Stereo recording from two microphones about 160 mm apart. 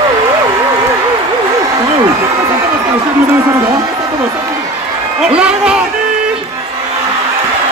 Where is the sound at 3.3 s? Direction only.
20° right (ahead or behind).